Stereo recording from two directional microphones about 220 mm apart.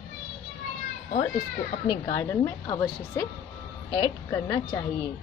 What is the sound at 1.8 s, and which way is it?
A woman's voice, 15° left (ahead or behind).